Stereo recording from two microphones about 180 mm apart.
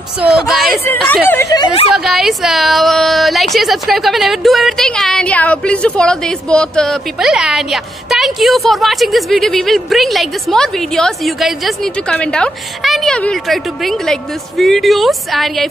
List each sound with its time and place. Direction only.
0.2 s a woman's voice: centre (ahead or behind)
0.8 s speech: 10° left (ahead or behind)
1.5 s speech: 25° left (ahead or behind)
2.0 s a woman's voice: centre (ahead or behind)